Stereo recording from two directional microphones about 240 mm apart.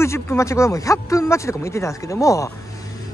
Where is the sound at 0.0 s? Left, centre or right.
Centre.